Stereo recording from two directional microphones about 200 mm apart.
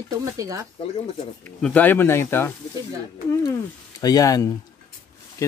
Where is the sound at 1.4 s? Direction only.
10° left (ahead or behind).